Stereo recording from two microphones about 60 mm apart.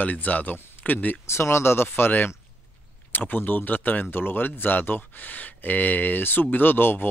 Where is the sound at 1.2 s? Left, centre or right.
Left.